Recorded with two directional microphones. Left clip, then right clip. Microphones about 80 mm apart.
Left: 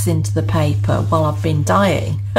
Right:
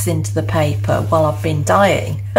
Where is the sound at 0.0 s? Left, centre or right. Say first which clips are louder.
Right 1 dB; left.